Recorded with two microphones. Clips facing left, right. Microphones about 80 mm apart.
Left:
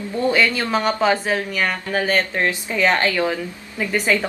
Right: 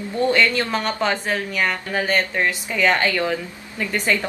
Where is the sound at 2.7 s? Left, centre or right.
Centre.